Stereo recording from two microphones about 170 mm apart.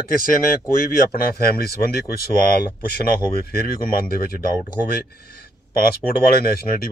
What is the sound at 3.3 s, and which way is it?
Speech, 60° left (ahead or behind).